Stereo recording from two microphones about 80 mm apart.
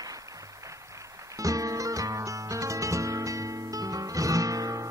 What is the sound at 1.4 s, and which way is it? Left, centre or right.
Music, right.